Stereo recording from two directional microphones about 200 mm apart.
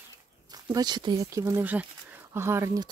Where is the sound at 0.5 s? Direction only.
20° right (ahead or behind).